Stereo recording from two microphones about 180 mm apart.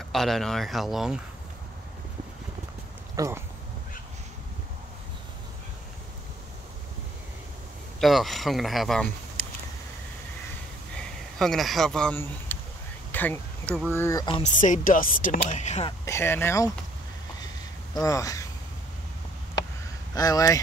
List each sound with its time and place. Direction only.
0.1 s speech: centre (ahead or behind)
3.2 s speech: 15° right (ahead or behind)
8.0 s speech: centre (ahead or behind)
11.0 s speech: centre (ahead or behind)
13.1 s a sound: 10° left (ahead or behind)
13.8 s speech: 15° left (ahead or behind)
14.2 s speech: 30° left (ahead or behind)
14.5 s speech: 45° left (ahead or behind)
16.1 s speech: 15° left (ahead or behind)
18.0 s speech: 20° left (ahead or behind)
20.2 s speech: 20° left (ahead or behind)